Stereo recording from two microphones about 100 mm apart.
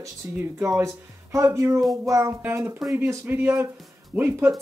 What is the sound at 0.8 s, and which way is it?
Speech, 35° right (ahead or behind).